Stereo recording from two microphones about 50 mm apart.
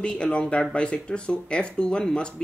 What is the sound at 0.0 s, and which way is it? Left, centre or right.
Speech, left.